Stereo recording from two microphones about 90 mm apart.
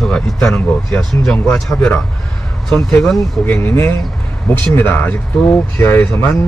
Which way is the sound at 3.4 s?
25° left (ahead or behind).